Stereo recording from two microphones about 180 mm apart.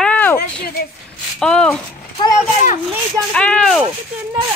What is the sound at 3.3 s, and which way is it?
Speech, 5° left (ahead or behind).